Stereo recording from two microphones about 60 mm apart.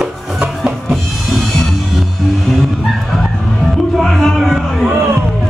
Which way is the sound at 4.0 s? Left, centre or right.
Centre.